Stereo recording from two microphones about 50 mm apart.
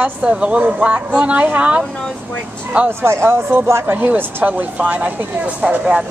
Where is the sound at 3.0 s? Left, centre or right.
Right.